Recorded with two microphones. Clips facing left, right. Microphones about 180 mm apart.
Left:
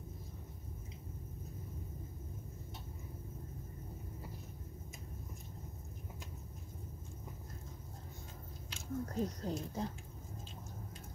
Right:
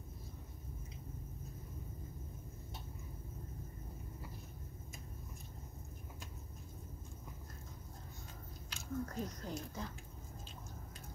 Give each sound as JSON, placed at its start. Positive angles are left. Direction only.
{"t": 8.6, "sound": "speech", "side_deg": 25}